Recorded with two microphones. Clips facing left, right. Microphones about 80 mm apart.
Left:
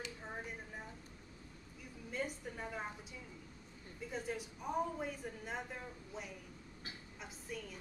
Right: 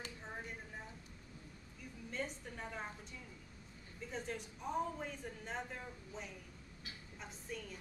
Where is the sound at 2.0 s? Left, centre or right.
Centre.